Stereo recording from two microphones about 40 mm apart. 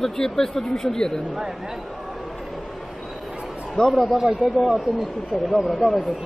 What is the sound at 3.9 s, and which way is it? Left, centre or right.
Speech, centre.